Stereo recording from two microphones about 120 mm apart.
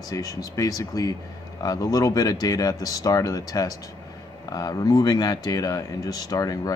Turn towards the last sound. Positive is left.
turn(degrees=30)  # may be behind; listen again after turning